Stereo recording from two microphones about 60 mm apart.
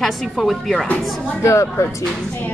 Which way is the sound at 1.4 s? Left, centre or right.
Left.